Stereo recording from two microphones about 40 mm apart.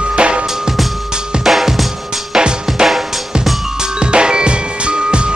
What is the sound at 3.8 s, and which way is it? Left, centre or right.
Music, right.